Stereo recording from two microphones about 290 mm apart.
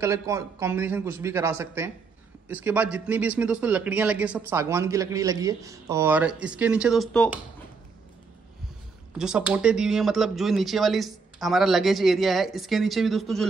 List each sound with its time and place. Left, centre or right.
0.0 s a man's voice: centre
9.2 s speech: centre